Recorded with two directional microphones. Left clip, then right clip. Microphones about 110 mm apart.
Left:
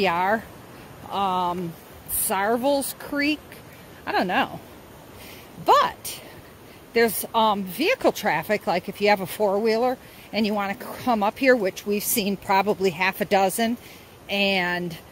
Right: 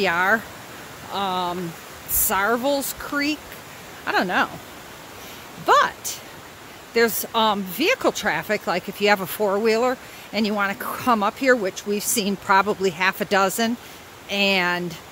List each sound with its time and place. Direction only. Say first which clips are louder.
0.0 s speech: right 2 dB; 15° right (ahead or behind)
5.7 s speech: right 1 dB; 20° right (ahead or behind)
8.0 s speech: even; 15° right (ahead or behind)
8.9 s speech: right 2 dB; 30° right (ahead or behind)
10.8 s speech: right 4 dB; 35° right (ahead or behind)
11.1 s speech: left 3 dB; 20° right (ahead or behind)
11.9 s speech: right 1 dB; 30° right (ahead or behind)
13.4 s speech: right 1 dB; 35° right (ahead or behind)